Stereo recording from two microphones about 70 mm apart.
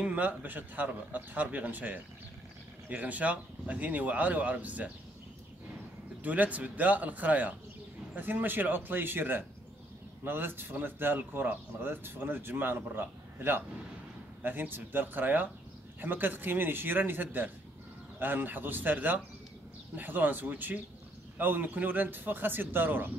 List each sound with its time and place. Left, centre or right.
0.0 s speech: right
6.2 s speech: right